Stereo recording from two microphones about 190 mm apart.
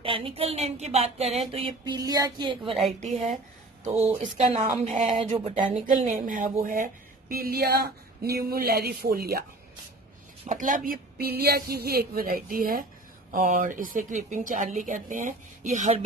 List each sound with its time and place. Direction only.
0.0 s speech: 30° right (ahead or behind)
1.5 s a sound: 25° right (ahead or behind)
2.8 s speech: 35° right (ahead or behind); by 9.4 s 55° right (ahead or behind)
10.4 s speech: 45° right (ahead or behind)